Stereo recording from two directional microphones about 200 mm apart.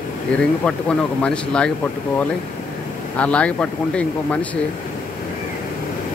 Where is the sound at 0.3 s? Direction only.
5° left (ahead or behind).